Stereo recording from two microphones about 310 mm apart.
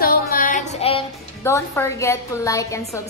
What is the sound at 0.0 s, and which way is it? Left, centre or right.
Music, left.